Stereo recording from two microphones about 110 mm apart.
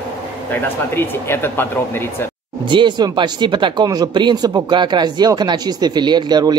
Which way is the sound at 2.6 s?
45° right (ahead or behind).